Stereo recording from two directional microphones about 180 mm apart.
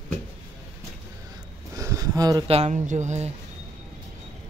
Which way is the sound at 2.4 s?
35° right (ahead or behind).